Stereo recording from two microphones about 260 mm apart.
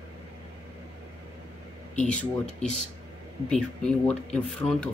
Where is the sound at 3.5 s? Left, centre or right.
Centre.